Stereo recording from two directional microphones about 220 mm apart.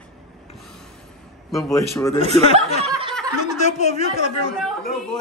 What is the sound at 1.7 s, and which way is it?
Speech, 15° left (ahead or behind).